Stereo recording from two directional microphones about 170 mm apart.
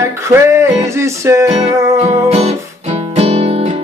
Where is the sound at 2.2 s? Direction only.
40° right (ahead or behind).